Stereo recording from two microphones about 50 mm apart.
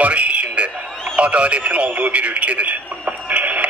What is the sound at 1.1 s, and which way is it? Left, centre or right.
Speech, right.